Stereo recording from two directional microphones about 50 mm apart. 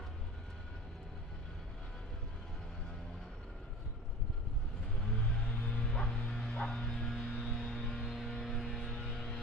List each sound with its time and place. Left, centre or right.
5.4 s bow-wow: left
7.1 s music: centre
7.3 s music: centre
7.9 s vehicle: centre
8.6 s music: centre
9.1 s a sound: centre